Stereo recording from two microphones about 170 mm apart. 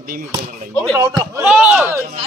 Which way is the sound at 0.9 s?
20° right (ahead or behind).